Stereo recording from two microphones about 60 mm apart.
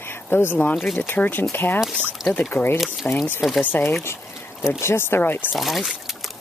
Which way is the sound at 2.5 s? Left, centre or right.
Left.